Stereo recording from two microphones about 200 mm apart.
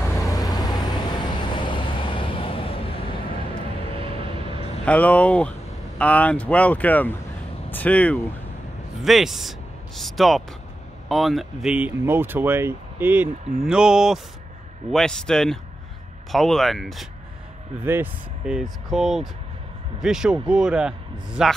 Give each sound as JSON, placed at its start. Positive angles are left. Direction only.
{"t": 0.0, "sound": "vehicle", "side_deg": 15}
{"t": 4.0, "sound": "vehicle", "side_deg": -25}
{"t": 4.8, "sound": "speech", "side_deg": 5}